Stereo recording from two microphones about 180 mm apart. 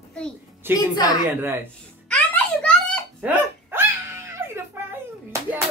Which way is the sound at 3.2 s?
10° right (ahead or behind).